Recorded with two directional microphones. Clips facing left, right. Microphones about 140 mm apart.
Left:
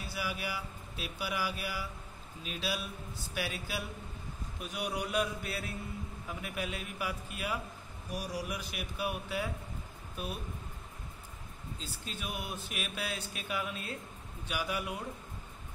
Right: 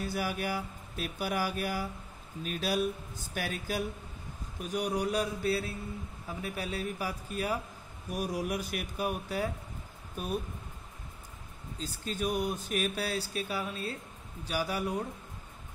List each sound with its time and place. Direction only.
0.0 s mantra: 45° right (ahead or behind)
4.6 s speech: 40° right (ahead or behind)
8.1 s mantra: 50° right (ahead or behind)
11.8 s speech: 40° right (ahead or behind)